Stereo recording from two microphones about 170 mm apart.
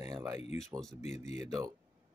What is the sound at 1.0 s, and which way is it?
Speech, 40° left (ahead or behind).